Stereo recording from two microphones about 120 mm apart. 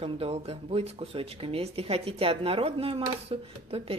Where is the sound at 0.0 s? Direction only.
55° right (ahead or behind).